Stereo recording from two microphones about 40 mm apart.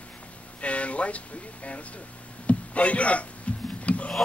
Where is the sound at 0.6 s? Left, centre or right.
Left.